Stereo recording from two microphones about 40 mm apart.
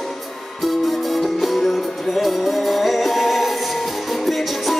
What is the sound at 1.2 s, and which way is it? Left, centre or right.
Music, centre.